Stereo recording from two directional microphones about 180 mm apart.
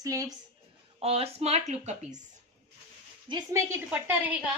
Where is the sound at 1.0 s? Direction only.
35° right (ahead or behind).